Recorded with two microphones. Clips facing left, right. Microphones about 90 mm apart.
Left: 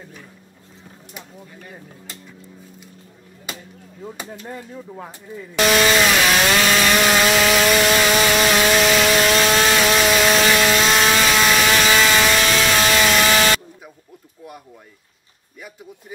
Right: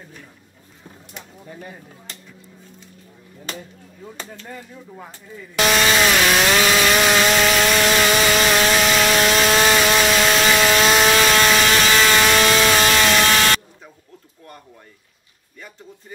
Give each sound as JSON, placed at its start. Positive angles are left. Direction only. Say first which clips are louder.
{"t": 4.0, "sound": "speech", "louder": "left 3 dB", "side_deg": 15}
{"t": 5.7, "sound": "chainsaw", "louder": "left 1 dB", "side_deg": 0}